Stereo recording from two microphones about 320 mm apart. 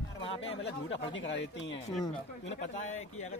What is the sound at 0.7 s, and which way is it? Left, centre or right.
Speech, left.